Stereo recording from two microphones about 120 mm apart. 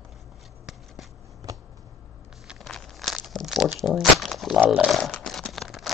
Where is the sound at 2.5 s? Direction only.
Centre (ahead or behind).